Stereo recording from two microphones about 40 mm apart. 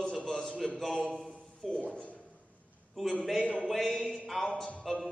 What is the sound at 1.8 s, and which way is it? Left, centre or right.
Speech, left.